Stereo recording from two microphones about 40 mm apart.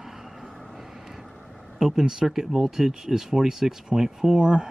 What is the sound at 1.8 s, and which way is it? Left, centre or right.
Speech, centre.